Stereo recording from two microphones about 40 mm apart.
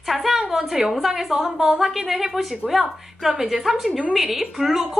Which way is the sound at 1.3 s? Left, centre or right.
Right.